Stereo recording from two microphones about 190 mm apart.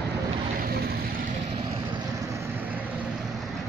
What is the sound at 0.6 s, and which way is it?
Vehicle, 55° right (ahead or behind).